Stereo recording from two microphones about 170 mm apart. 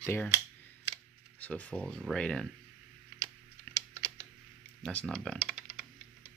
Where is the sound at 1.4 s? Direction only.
5° left (ahead or behind).